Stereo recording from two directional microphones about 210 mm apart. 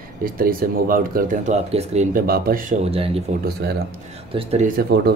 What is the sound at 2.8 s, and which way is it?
Speech, 30° right (ahead or behind).